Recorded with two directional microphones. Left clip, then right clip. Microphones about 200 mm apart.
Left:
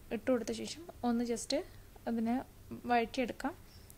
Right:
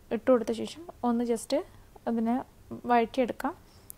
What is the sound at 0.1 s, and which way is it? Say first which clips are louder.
A woman's voice: right 9 dB; 10° right (ahead or behind).